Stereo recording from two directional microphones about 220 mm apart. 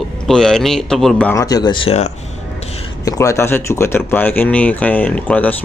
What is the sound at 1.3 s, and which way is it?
Speech, 15° left (ahead or behind).